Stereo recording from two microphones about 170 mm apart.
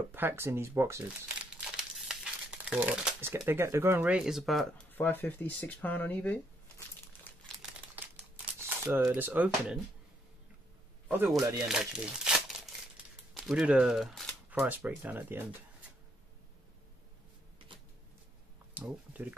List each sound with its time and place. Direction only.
0.1 s speech: 15° right (ahead or behind)
1.6 s speech: 5° right (ahead or behind)
4.9 s speech: 10° left (ahead or behind)
7.3 s crumpling: 10° left (ahead or behind)
8.5 s speech: 15° right (ahead or behind)
11.1 s speech: 15° right (ahead or behind)
11.5 s crumpling: 5° right (ahead or behind)
13.3 s speech: centre (ahead or behind)
18.8 s a sound: 10° right (ahead or behind)